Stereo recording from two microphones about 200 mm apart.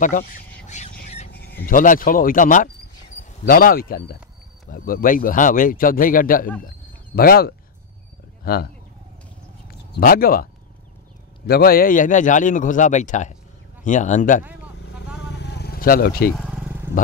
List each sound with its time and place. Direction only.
0.0 s a man's voice: 40° left (ahead or behind)
0.7 s squawk: 35° left (ahead or behind)
1.3 s speech: 50° left (ahead or behind)
9.7 s a man's voice: 45° left (ahead or behind)
15.3 s vehicle: 55° left (ahead or behind)
16.3 s vehicle: centre (ahead or behind)